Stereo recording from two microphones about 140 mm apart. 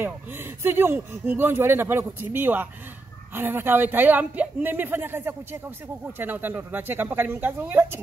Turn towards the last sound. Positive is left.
turn(degrees=-15)  # may be behind; listen again after turning